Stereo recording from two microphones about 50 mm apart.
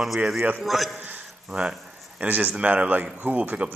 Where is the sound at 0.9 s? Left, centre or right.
Right.